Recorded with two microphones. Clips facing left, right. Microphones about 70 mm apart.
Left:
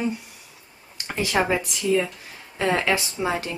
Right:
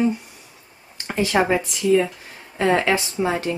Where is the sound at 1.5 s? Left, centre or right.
Right.